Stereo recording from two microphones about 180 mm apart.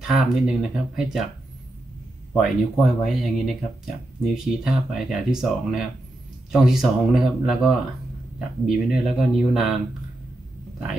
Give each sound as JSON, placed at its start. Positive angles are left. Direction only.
{"t": 0.0, "sound": "speech", "side_deg": -5}
{"t": 2.3, "sound": "speech", "side_deg": 0}